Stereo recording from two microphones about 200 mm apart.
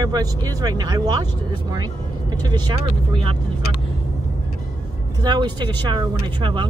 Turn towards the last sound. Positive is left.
turn(degrees=-25)  # may be behind; listen again after turning